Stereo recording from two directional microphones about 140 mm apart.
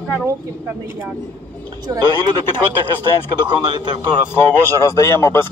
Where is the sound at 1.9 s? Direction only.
25° right (ahead or behind).